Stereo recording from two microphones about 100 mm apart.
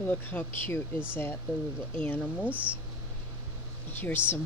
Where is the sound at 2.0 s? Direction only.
15° left (ahead or behind).